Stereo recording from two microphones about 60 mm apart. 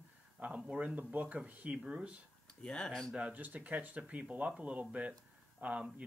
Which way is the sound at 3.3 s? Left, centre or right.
Right.